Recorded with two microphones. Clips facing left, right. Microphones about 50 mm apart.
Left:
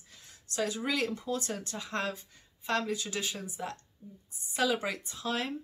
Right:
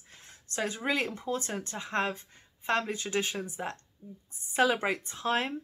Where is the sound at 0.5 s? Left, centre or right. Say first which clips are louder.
Right 1 dB; right.